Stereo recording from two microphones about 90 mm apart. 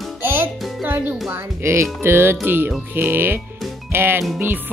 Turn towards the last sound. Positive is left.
turn(degrees=-25)  # may be behind; listen again after turning